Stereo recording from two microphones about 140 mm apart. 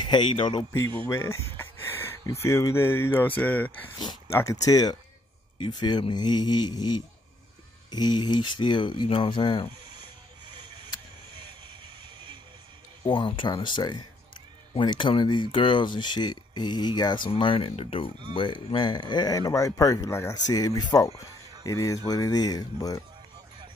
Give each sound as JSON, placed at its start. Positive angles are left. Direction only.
{"t": 0.0, "sound": "speech", "side_deg": 30}
{"t": 1.0, "sound": "speech", "side_deg": 20}
{"t": 13.1, "sound": "speech", "side_deg": 35}